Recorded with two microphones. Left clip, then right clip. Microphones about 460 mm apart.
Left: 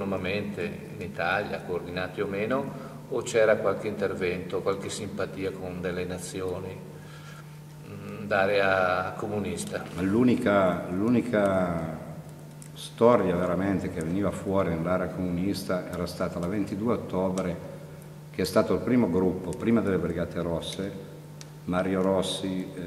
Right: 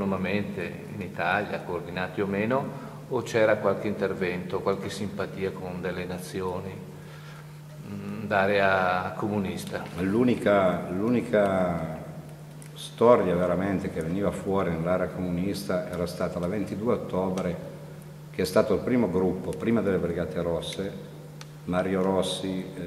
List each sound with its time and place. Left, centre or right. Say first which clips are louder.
0.2 s a sound: even; right
1.1 s a man's voice: right 1 dB; right
3.3 s a man's voice: even; right
8.3 s a man's voice: right 1 dB; right
9.9 s speech: even; centre
13.0 s speech: right 1 dB; centre